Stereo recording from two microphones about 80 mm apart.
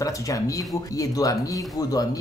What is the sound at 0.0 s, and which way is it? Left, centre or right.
Speech, left.